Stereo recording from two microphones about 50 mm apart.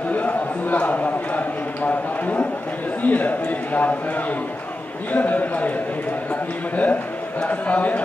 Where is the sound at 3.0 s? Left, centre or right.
Left.